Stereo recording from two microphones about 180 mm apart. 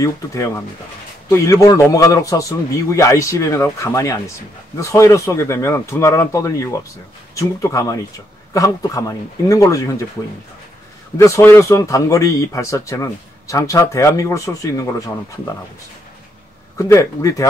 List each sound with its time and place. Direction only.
0.0 s speech: 15° left (ahead or behind)
11.1 s speech: 15° left (ahead or behind)
16.7 s speech: 20° left (ahead or behind)